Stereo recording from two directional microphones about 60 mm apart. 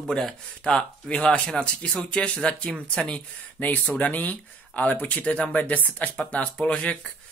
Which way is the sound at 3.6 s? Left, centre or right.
Left.